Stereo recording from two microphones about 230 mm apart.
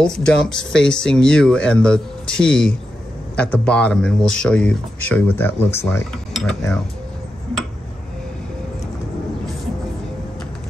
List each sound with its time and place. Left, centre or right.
0.0 s speech: centre